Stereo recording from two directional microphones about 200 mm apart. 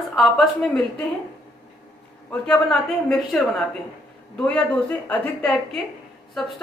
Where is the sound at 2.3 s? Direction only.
5° left (ahead or behind).